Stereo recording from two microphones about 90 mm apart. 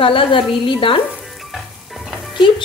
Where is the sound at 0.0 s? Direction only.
75° left (ahead or behind).